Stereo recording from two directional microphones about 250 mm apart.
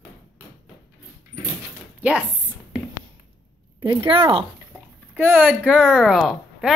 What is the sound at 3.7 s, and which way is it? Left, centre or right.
Speech, right.